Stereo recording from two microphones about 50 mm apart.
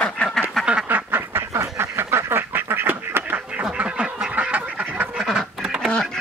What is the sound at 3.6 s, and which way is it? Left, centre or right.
Duck, right.